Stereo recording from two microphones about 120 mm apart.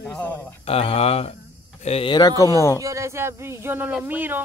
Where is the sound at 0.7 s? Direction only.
55° left (ahead or behind).